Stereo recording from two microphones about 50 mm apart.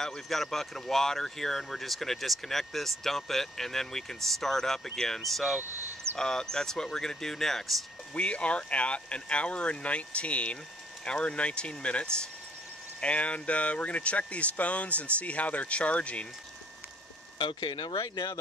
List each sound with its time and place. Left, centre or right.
0.0 s speech: centre
6.1 s speech: centre
8.1 s speech: left